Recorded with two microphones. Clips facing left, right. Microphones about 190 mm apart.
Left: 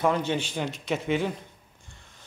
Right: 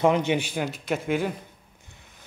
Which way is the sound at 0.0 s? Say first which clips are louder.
Right 4 dB; 20° right (ahead or behind).